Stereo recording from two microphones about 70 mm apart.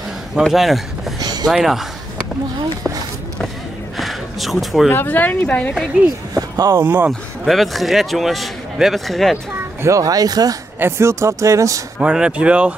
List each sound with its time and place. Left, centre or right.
0.4 s a man's voice: centre
1.2 s a sound: right
1.5 s a man's voice: centre
3.9 s a sound: centre
4.8 s speech: left
6.3 s a sound: right
6.8 s speech: right
7.1 s a man's voice: centre
9.8 s speech: right
10.8 s speech: right
12.0 s speech: centre